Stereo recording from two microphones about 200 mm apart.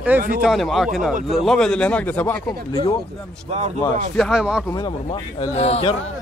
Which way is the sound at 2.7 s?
20° left (ahead or behind).